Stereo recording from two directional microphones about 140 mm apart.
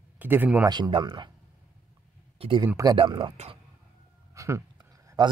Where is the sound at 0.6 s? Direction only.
30° right (ahead or behind).